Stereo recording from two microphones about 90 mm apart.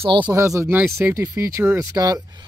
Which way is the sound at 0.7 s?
25° right (ahead or behind).